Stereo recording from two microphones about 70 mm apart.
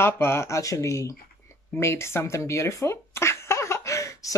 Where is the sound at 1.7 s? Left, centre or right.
Left.